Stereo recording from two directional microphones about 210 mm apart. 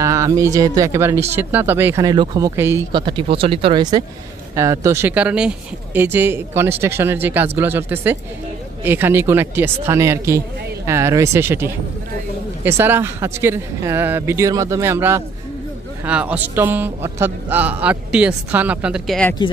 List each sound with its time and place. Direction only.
0.0 s a man's voice: 15° right (ahead or behind); by 19.3 s centre (ahead or behind)